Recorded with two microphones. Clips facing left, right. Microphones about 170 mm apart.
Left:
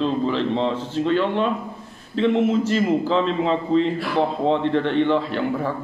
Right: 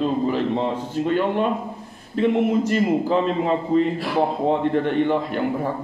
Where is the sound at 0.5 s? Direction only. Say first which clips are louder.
Left 1 dB; 50° right (ahead or behind).